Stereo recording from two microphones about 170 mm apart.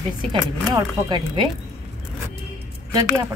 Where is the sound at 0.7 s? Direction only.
25° right (ahead or behind).